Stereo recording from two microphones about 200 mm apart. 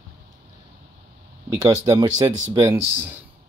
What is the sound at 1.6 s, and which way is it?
Speech, 15° right (ahead or behind).